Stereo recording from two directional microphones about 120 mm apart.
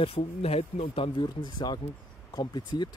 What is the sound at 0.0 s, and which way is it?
Speech, 55° left (ahead or behind).